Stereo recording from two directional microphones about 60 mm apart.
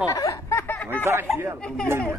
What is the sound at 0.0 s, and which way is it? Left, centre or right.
Snicker, left.